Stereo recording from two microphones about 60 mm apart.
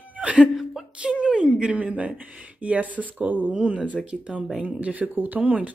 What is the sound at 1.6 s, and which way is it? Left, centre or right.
Speech, right.